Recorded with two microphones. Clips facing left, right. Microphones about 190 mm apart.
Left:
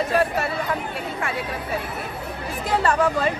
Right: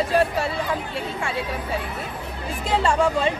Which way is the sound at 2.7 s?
25° right (ahead or behind).